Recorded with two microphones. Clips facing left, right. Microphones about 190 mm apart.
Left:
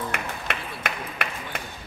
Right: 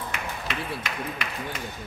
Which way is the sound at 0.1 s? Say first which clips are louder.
Left 1 dB; 60° left (ahead or behind).